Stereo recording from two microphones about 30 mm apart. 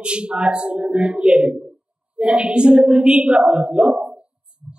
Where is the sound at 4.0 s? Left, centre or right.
Right.